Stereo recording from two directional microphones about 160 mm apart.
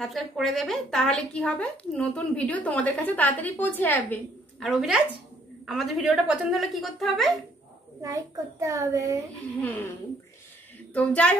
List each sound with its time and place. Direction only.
0.0 s a woman's voice: centre (ahead or behind)
4.6 s a woman's voice: 5° right (ahead or behind)
8.0 s a child's voice: 20° right (ahead or behind)
10.9 s a woman's voice: 10° left (ahead or behind)